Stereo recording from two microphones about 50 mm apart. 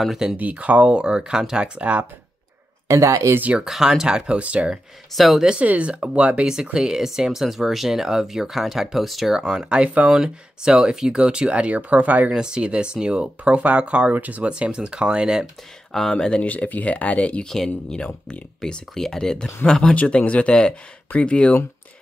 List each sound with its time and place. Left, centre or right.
0.4 s speech: right; by 1.7 s centre
1.8 s speech: right
2.9 s a woman's voice: right
3.6 s speech: centre
4.4 s speech: right
5.1 s speech: centre
5.6 s speech: right; by 9.4 s centre
9.4 s speech: centre; by 12.4 s right
12.4 s speech: centre
15.9 s speech: centre
16.4 s speech: left